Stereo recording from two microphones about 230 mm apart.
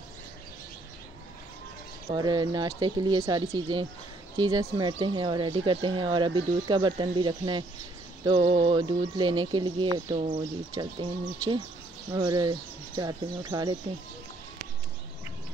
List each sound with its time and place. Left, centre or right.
2.0 s speech: centre
10.1 s speech: right
10.4 s speech: centre